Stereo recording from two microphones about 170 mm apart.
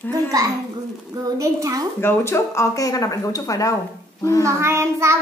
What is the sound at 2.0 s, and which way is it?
Speech, 15° left (ahead or behind).